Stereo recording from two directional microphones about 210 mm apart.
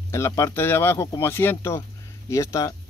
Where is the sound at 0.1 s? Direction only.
15° left (ahead or behind).